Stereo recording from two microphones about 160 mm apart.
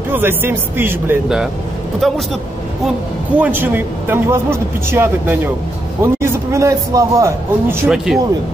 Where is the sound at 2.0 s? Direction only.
Centre (ahead or behind).